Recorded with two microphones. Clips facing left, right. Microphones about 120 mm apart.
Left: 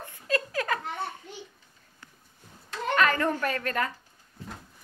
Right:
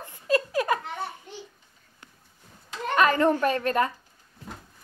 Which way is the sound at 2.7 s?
20° right (ahead or behind).